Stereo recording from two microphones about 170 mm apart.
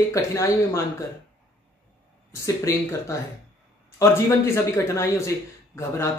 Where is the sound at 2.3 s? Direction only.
15° left (ahead or behind).